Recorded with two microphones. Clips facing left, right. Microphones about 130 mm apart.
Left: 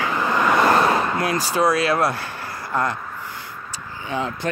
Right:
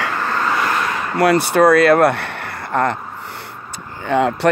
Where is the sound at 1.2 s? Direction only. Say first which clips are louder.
Right 8 dB; 65° right (ahead or behind).